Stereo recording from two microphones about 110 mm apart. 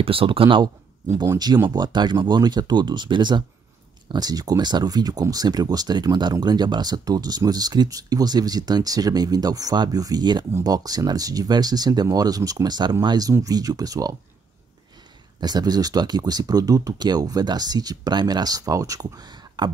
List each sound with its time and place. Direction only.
0.0 s speech: 55° right (ahead or behind)
1.0 s speech: 25° right (ahead or behind)
15.4 s speech: 40° right (ahead or behind)